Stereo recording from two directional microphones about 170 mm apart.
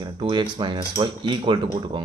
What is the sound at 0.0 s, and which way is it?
Speech, 30° right (ahead or behind).